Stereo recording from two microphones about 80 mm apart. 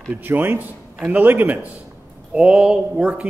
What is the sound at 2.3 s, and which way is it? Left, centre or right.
Speech, centre.